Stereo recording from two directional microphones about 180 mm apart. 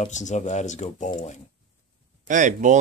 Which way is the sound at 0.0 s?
40° left (ahead or behind).